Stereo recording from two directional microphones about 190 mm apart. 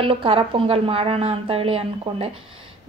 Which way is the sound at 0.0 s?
30° right (ahead or behind).